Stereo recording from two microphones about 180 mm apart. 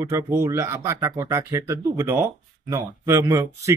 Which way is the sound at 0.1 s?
15° right (ahead or behind).